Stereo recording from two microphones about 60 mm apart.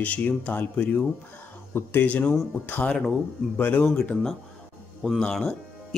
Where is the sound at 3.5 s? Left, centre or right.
Left.